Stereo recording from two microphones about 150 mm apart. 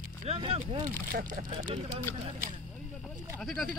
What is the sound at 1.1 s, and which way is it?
Speech, 65° right (ahead or behind).